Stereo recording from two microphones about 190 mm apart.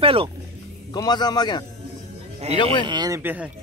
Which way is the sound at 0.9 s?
20° left (ahead or behind).